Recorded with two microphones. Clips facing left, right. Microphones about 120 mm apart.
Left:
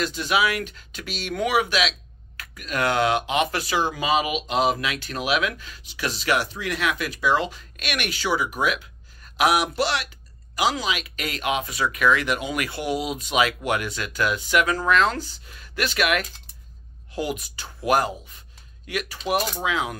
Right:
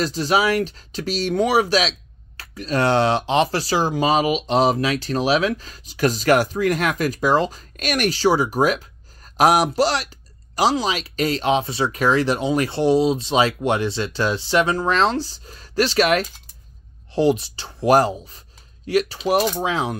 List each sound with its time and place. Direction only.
0.0 s speech: 35° right (ahead or behind)